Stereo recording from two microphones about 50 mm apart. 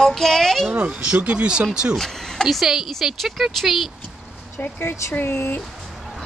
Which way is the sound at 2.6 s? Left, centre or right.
Centre.